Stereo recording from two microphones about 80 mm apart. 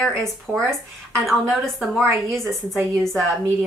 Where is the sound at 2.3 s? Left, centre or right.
Centre.